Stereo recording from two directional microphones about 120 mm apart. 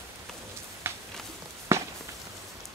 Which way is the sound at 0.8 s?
20° right (ahead or behind).